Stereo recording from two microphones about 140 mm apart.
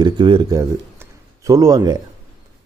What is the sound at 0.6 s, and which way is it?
Speech, 25° right (ahead or behind).